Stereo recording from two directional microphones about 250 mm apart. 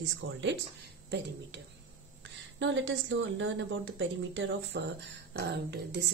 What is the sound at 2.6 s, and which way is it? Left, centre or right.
A woman's voice, right.